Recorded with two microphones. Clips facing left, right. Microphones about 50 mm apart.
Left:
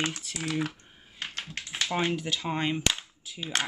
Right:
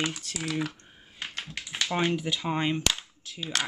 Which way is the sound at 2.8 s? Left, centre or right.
Left.